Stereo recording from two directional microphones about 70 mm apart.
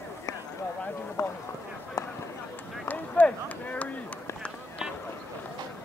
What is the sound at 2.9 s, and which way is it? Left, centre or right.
Run, left.